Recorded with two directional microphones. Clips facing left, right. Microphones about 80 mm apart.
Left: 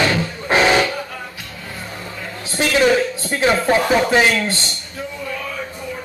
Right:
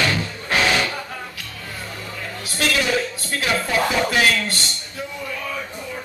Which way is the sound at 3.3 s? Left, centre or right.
Left.